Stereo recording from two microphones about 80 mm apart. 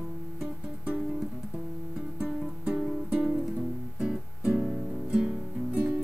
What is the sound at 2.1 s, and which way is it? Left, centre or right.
Music, centre.